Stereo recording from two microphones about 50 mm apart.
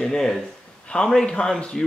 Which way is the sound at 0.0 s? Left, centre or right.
Centre.